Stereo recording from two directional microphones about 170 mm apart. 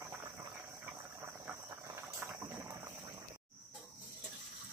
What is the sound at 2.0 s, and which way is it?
Vehicle, 15° right (ahead or behind).